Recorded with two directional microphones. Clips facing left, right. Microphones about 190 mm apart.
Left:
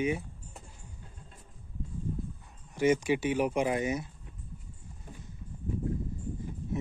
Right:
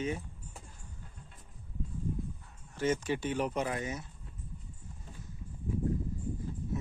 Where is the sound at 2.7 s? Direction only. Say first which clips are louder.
Left 5 dB; 15° left (ahead or behind).